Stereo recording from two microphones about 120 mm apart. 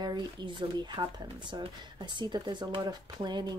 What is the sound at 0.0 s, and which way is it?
Speech, 35° right (ahead or behind).